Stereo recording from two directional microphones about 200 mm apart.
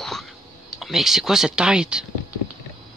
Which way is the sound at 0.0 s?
Centre (ahead or behind).